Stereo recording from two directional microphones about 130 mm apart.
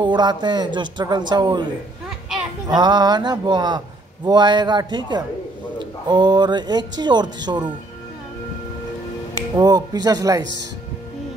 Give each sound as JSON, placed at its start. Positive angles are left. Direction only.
{"t": 0.0, "sound": "speech", "side_deg": -35}
{"t": 2.7, "sound": "speech", "side_deg": -35}
{"t": 9.6, "sound": "speech", "side_deg": -30}